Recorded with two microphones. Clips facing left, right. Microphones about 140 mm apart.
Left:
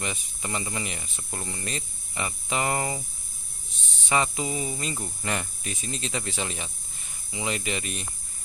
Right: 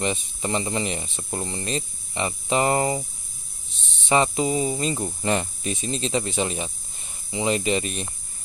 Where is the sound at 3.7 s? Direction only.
25° right (ahead or behind).